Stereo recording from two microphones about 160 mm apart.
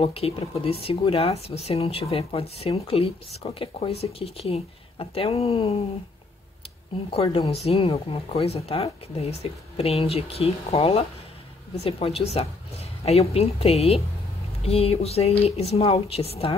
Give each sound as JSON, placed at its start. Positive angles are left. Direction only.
{"t": 0.0, "sound": "speech", "side_deg": 40}
{"t": 7.1, "sound": "speech", "side_deg": 40}